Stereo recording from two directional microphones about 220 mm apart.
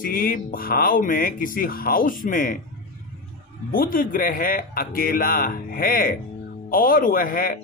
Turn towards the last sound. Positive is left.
turn(degrees=40)  # may be behind; listen again after turning